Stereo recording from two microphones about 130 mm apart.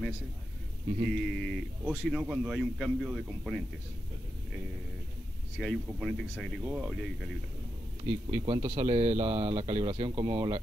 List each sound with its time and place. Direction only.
1.1 s a man's voice: 5° left (ahead or behind)
5.6 s a man's voice: 5° left (ahead or behind)
6.6 s speech: 15° right (ahead or behind)
6.9 s a man's voice: centre (ahead or behind)
8.0 s speech: 50° right (ahead or behind)